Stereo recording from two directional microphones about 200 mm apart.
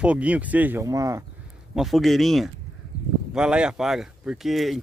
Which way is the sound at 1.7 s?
Centre (ahead or behind).